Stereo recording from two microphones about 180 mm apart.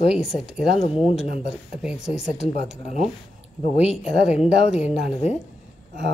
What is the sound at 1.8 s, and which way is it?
Speech, 5° right (ahead or behind).